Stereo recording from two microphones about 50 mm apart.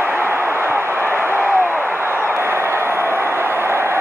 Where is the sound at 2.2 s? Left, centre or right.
Right.